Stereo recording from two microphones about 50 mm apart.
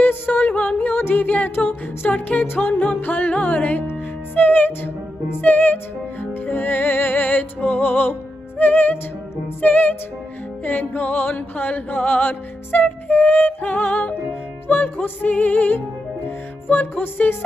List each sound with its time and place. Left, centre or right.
0.0 s music: left
0.5 s music: left
1.2 s music: left
2.4 s music: left
2.9 s music: left
16.8 s music: left